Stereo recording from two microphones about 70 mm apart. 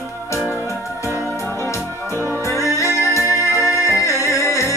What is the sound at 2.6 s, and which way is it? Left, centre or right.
Music, left.